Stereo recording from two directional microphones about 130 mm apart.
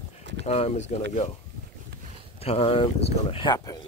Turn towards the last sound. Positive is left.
turn(degrees=35)  # may be behind; listen again after turning